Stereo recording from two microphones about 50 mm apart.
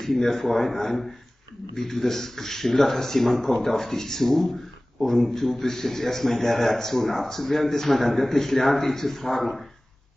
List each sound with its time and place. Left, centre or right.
0.0 s a man's voice: centre